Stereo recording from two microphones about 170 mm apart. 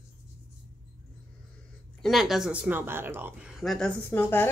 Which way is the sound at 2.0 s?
Centre (ahead or behind).